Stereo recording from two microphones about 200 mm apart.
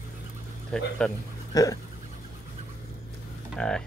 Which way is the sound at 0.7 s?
5° left (ahead or behind).